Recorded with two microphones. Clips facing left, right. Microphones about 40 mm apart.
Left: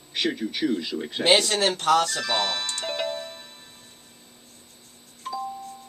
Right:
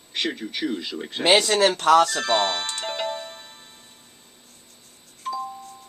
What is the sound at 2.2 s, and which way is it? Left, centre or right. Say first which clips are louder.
Speech: right 4 dB; centre.